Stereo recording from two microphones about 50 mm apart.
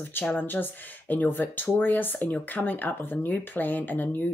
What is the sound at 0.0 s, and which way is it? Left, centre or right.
Speech, left.